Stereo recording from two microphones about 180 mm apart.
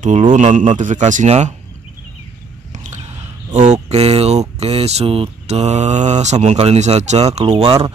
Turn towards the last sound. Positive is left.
turn(degrees=-35)  # may be behind; listen again after turning